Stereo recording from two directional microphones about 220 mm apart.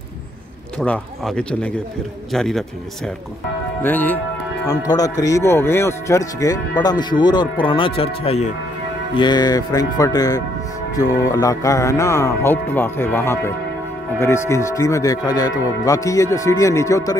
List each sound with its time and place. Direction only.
0.7 s speech: 5° left (ahead or behind)